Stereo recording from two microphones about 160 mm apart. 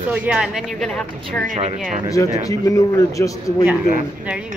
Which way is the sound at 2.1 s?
20° left (ahead or behind).